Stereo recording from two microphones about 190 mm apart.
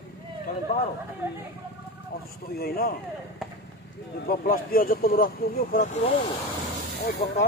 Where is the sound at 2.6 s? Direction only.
55° left (ahead or behind).